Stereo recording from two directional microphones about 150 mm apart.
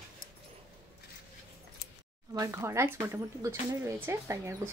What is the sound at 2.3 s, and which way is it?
Speech, 20° right (ahead or behind).